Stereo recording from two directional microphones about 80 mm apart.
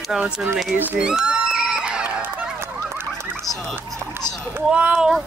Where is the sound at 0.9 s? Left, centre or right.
Centre.